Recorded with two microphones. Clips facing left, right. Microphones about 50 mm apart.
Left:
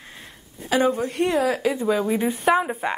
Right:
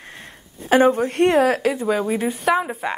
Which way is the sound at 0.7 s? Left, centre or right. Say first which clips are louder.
Right 5 dB; right.